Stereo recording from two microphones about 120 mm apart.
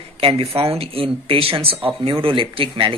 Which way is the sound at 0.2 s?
50° right (ahead or behind).